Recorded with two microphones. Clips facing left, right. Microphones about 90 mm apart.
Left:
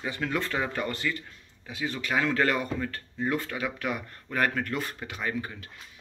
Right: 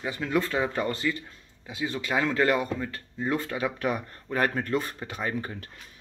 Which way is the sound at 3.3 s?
25° right (ahead or behind).